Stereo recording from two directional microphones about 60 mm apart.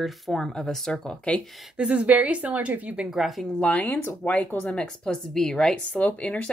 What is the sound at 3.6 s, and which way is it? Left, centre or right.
Speech, left.